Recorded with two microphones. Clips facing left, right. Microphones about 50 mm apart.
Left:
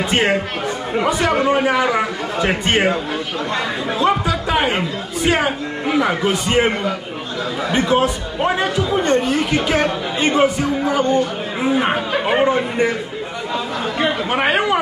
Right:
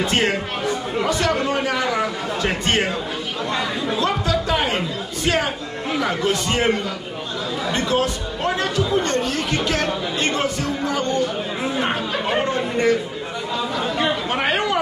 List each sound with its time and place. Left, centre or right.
0.0 s chatter: centre
0.9 s speech: left
4.0 s speech: centre
13.9 s speech: centre